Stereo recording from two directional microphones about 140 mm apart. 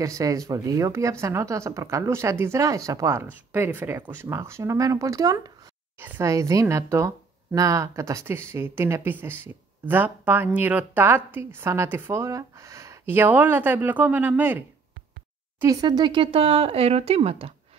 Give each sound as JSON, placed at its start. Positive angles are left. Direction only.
{"t": 0.0, "sound": "a woman's voice", "side_deg": -25}
{"t": 15.6, "sound": "speech", "side_deg": -25}